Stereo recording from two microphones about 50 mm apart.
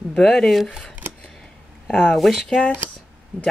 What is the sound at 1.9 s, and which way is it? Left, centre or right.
Speech, left.